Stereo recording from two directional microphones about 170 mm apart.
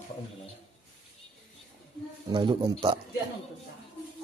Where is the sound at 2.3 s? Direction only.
30° right (ahead or behind).